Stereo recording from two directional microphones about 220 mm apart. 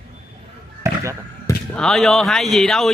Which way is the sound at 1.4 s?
5° left (ahead or behind).